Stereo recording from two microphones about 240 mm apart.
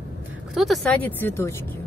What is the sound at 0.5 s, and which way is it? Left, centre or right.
Speech, centre.